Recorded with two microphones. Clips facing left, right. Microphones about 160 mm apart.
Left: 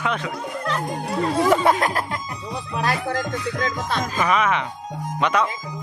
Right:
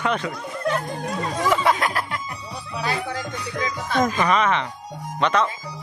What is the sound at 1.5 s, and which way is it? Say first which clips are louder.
Speech: even; 40° left (ahead or behind).